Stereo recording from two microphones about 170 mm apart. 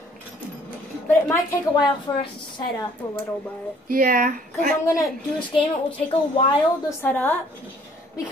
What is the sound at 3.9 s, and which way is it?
Speech, 55° right (ahead or behind).